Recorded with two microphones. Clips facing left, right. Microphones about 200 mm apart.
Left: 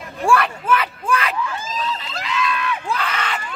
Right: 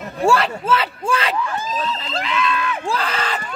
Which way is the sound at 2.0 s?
30° right (ahead or behind).